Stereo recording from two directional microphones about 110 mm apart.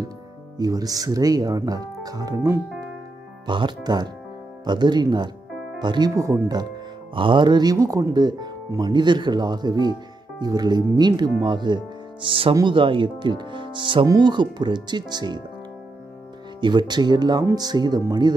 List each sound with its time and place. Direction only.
0.6 s speech: 35° right (ahead or behind)
3.4 s speech: 45° right (ahead or behind)
7.2 s speech: 45° right (ahead or behind)
16.6 s speech: 40° right (ahead or behind)